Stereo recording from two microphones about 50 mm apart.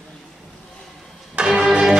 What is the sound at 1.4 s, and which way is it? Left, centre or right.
Music, centre.